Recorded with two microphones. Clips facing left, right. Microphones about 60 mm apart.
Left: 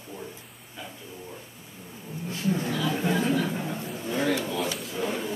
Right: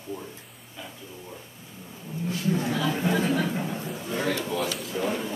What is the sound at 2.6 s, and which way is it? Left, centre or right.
Speech, centre.